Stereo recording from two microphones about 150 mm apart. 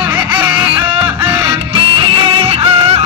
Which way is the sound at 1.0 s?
35° right (ahead or behind).